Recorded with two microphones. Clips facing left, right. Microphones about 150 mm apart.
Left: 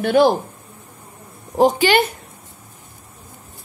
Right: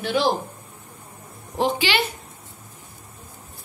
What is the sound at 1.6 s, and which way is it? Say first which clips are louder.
Speech: left 8 dB; 45° left (ahead or behind).